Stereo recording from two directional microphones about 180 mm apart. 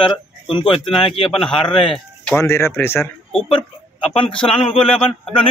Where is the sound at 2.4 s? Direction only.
15° left (ahead or behind).